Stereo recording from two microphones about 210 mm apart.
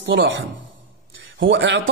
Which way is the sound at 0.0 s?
65° right (ahead or behind).